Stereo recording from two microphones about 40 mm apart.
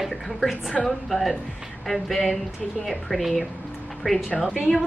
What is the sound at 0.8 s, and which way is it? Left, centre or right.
Speech, centre.